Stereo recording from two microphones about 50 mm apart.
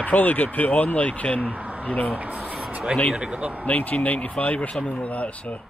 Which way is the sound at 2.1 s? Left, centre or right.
Right.